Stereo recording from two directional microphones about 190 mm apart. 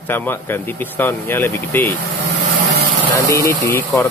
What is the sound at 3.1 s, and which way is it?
Speech, 15° left (ahead or behind).